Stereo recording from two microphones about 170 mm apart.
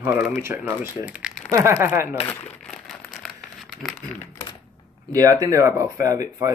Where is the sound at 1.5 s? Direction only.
15° right (ahead or behind).